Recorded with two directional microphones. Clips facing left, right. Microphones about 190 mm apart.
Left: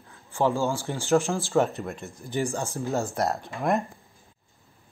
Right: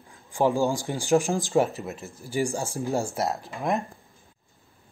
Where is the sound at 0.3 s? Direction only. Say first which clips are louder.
Right 2 dB; 15° right (ahead or behind).